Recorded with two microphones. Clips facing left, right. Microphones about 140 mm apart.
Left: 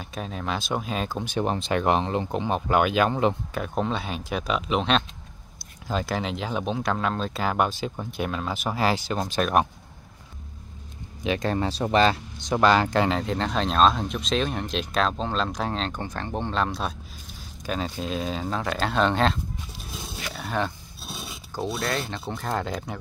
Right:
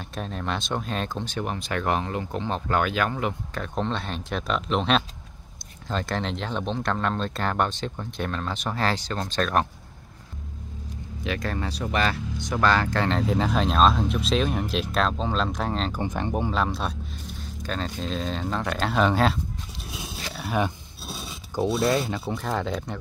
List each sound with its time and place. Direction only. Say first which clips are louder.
0.0 s speech: even; centre (ahead or behind)
1.4 s speech: left 5 dB; 30° left (ahead or behind)
3.5 s speech: left 1 dB; 5° left (ahead or behind)
11.2 s speech: left 4 dB; 20° left (ahead or behind)
11.5 s speech: left 5 dB; 30° left (ahead or behind)
13.1 s speech: right 2 dB; 5° right (ahead or behind)
16.0 s speech: right 3 dB; 15° right (ahead or behind)
20.3 s a sound: right 2 dB; 10° right (ahead or behind)
21.1 s filing: right 1 dB; 5° left (ahead or behind)
21.6 s speech: right 6 dB; 5° right (ahead or behind)